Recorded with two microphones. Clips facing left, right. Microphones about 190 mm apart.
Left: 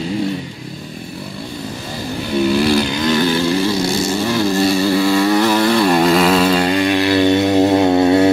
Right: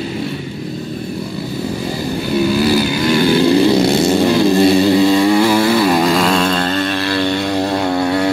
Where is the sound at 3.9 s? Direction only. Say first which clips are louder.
Right 5 dB; 60° right (ahead or behind).